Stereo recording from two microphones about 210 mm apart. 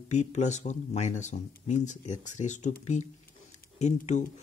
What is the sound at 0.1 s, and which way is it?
Speech, 35° left (ahead or behind).